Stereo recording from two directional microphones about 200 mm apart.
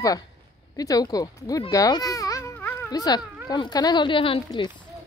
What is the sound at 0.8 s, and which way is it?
Baby cry, 20° left (ahead or behind).